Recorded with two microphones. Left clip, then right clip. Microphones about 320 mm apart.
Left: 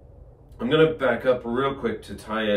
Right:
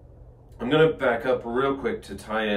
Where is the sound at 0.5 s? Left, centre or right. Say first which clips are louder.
Left 1 dB; centre.